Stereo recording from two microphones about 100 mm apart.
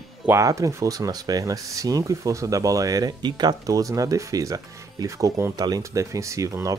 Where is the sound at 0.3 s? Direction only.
30° right (ahead or behind).